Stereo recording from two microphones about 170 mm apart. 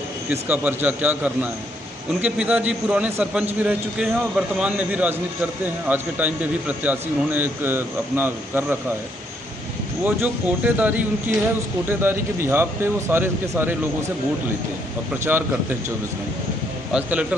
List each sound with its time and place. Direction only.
0.3 s a man's voice: 10° right (ahead or behind)
10.0 s a man's voice: 10° right (ahead or behind)
15.3 s a man's voice: 10° right (ahead or behind)
16.9 s a man's voice: 5° right (ahead or behind)